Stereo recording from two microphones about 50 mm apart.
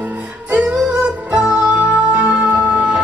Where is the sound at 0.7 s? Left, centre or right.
Centre.